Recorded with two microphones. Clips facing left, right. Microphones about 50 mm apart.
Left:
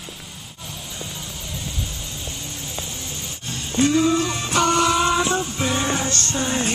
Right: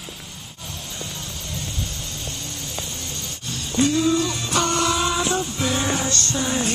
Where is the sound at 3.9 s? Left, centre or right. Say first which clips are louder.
Left 2 dB; left.